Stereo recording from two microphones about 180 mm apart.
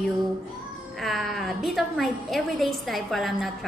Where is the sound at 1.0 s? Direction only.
Centre (ahead or behind).